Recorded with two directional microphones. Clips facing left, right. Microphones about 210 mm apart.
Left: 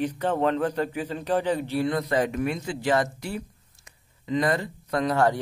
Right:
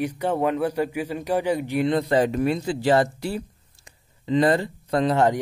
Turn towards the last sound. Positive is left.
turn(degrees=-25)  # may be behind; listen again after turning